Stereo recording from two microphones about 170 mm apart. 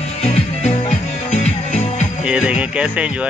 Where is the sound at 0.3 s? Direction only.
45° left (ahead or behind).